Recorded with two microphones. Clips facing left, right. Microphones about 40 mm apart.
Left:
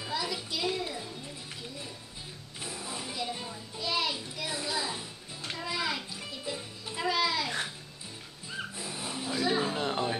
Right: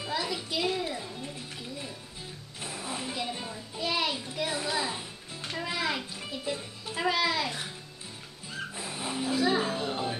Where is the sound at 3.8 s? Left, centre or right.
Right.